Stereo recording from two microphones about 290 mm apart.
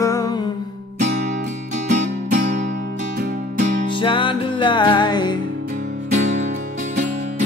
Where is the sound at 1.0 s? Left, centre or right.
Right.